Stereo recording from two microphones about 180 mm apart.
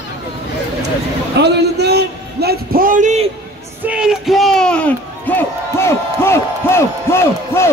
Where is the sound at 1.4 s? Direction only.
65° right (ahead or behind); by 3.3 s 40° right (ahead or behind).